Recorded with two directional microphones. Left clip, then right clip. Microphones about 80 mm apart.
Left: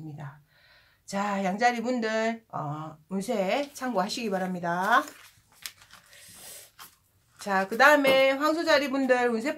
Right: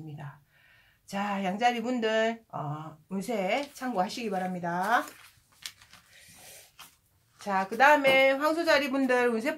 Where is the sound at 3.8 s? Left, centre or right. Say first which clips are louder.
Left 2 dB; left.